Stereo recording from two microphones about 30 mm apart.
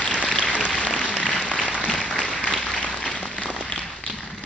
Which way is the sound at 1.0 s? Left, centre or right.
Left.